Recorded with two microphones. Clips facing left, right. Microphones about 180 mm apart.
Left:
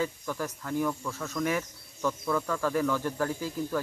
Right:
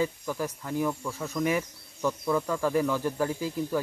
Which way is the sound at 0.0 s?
10° right (ahead or behind).